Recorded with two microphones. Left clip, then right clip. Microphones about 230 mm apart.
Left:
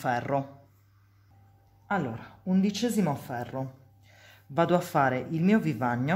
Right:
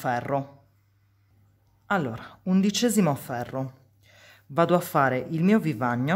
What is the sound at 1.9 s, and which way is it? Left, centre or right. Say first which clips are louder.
Speech: right 4 dB; right.